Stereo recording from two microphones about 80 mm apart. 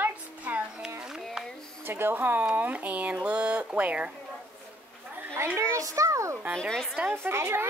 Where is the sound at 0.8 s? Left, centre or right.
Centre.